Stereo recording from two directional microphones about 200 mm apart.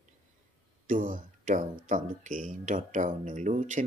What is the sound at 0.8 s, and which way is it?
Speech, 40° right (ahead or behind).